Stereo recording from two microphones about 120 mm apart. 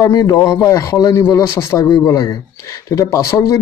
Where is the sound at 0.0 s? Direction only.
30° left (ahead or behind).